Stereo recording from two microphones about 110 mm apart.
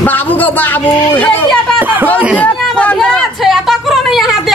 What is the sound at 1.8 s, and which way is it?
Speech, 15° right (ahead or behind).